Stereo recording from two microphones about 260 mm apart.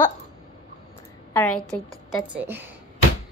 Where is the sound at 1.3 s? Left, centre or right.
Centre.